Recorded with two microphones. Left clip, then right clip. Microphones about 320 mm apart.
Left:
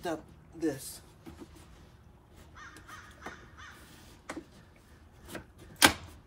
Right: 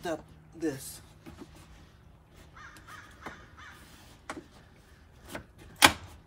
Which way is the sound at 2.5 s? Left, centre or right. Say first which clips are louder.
Even; right.